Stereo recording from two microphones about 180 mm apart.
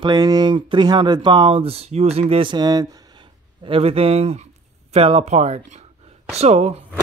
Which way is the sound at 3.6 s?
30° right (ahead or behind).